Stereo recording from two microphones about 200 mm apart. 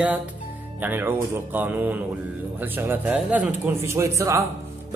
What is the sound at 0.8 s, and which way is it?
A man's voice, 10° right (ahead or behind).